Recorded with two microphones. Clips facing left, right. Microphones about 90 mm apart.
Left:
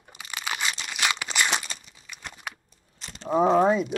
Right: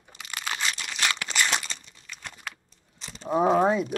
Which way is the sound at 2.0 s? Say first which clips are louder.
Left 1 dB; 15° left (ahead or behind).